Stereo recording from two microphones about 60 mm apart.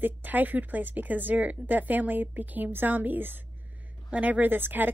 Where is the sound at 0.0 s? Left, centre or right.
Right.